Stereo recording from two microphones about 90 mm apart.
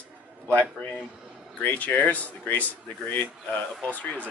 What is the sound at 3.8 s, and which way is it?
Speech, 15° left (ahead or behind).